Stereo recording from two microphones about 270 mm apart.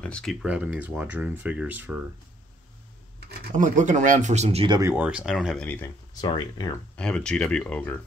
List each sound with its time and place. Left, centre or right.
0.0 s speech: centre
3.2 s speech: right; by 5.9 s centre
6.2 s speech: centre
7.0 s speech: centre